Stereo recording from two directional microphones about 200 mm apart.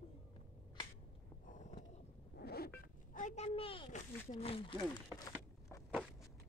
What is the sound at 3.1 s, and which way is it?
A woman's voice, 35° left (ahead or behind).